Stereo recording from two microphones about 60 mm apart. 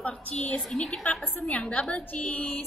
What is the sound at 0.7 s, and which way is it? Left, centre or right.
Speech, centre.